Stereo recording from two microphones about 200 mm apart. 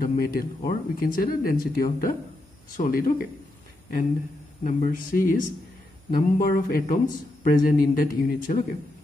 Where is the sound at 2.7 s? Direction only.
45° left (ahead or behind).